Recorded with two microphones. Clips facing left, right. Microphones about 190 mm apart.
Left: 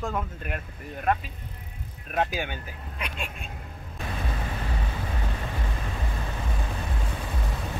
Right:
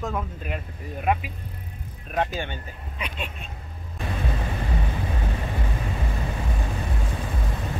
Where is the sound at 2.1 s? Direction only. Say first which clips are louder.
Right 1 dB; 10° left (ahead or behind).